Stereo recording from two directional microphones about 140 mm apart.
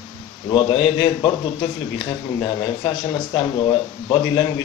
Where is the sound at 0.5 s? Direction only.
35° left (ahead or behind).